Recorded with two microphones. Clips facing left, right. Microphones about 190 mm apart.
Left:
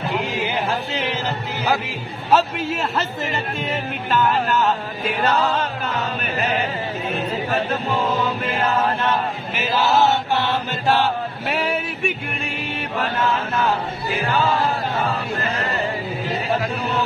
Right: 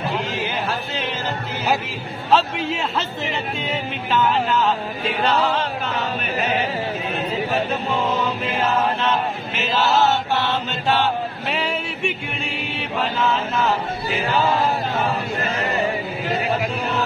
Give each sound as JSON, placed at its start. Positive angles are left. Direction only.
{"t": 0.1, "sound": "a sound", "side_deg": 15}
{"t": 2.3, "sound": "a man's voice", "side_deg": 0}
{"t": 9.5, "sound": "chant", "side_deg": 10}